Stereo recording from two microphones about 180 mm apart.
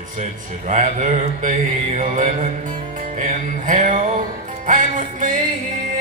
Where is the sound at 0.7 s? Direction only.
40° right (ahead or behind).